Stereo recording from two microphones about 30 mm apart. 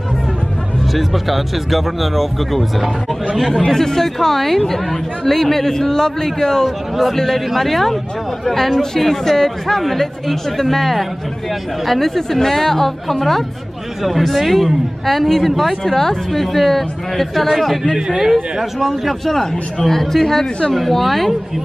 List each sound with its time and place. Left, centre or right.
0.9 s speech: centre
3.7 s a man's voice: centre
15.8 s a man's voice: centre